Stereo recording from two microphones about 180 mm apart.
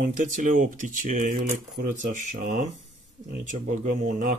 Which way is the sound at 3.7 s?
45° right (ahead or behind).